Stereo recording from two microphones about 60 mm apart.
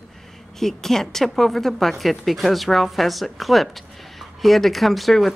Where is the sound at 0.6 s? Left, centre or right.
Centre.